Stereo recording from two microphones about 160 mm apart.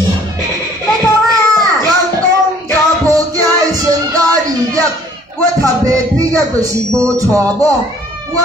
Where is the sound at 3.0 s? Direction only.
20° right (ahead or behind).